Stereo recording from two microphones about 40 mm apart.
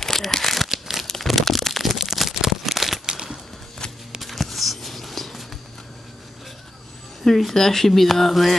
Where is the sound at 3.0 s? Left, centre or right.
Centre.